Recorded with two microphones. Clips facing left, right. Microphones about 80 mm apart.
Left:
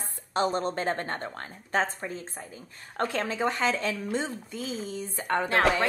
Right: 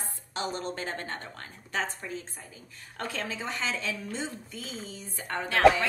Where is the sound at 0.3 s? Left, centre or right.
Left.